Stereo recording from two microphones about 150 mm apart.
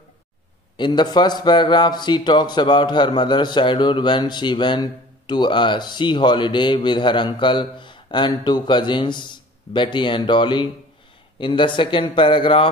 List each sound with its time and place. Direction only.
0.7 s a man's voice: 30° left (ahead or behind)